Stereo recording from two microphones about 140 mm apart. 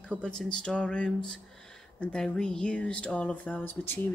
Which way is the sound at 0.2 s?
5° left (ahead or behind).